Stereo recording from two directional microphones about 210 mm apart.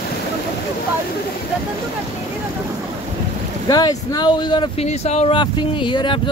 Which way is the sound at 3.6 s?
20° left (ahead or behind).